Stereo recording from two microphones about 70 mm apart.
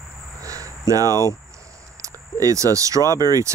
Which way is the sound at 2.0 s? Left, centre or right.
Right.